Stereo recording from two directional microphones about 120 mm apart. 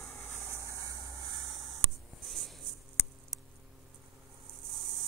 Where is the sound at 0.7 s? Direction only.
30° right (ahead or behind).